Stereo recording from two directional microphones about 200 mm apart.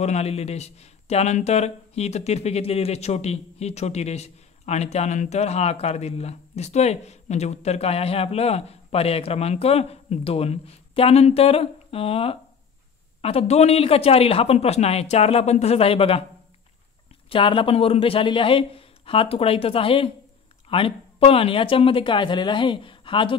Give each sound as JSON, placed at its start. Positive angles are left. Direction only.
{"t": 0.0, "sound": "speech", "side_deg": 35}
{"t": 17.3, "sound": "a man's voice", "side_deg": 25}